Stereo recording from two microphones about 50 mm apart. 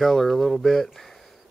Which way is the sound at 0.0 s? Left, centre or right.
Centre.